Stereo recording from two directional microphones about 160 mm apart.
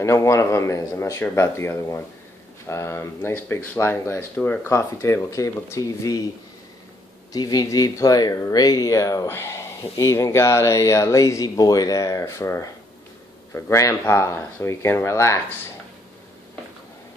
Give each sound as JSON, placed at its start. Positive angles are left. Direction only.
{"t": 0.0, "sound": "speech", "side_deg": 20}
{"t": 7.3, "sound": "speech", "side_deg": 25}